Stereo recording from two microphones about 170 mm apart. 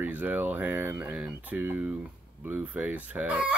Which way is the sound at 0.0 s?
10° right (ahead or behind).